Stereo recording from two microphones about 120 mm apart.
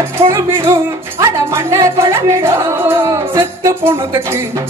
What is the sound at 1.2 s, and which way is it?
Music, 30° right (ahead or behind).